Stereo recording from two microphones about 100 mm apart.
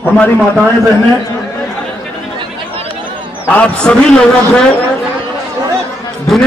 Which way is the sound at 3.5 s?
10° left (ahead or behind).